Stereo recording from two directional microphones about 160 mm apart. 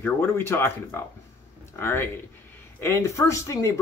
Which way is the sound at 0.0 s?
15° left (ahead or behind).